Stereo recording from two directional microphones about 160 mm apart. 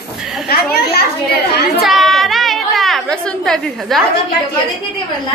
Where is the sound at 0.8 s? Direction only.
80° left.